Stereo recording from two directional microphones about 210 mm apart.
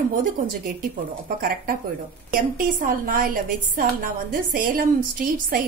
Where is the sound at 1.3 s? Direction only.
45° right (ahead or behind).